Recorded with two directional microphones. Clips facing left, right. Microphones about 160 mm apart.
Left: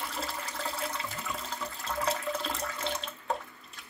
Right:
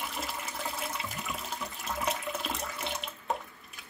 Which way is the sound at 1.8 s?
20° right (ahead or behind).